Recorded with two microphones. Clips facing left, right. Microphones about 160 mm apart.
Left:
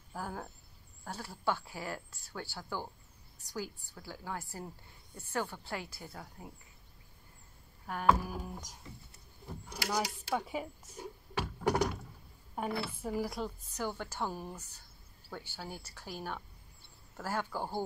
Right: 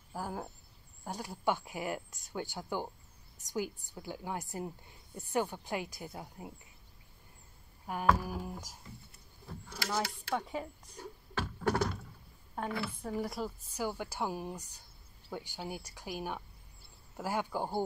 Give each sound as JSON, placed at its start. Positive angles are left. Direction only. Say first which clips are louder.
{"t": 0.1, "sound": "a woman's voice", "louder": "right 2 dB", "side_deg": -10}
{"t": 7.8, "sound": "a sound", "louder": "right 2 dB", "side_deg": -10}
{"t": 8.3, "sound": "a woman's voice", "louder": "right 2 dB", "side_deg": -10}
{"t": 9.7, "sound": "speech", "louder": "left 1 dB", "side_deg": 15}
{"t": 11.0, "sound": "a sound", "louder": "left 1 dB", "side_deg": 15}
{"t": 12.6, "sound": "a woman's voice", "louder": "left 1 dB", "side_deg": 10}